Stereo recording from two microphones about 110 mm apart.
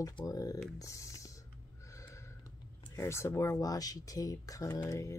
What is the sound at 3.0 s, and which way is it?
Speech, 25° left (ahead or behind).